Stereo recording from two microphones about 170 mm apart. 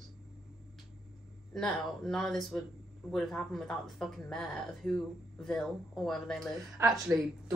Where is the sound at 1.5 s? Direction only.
Centre (ahead or behind).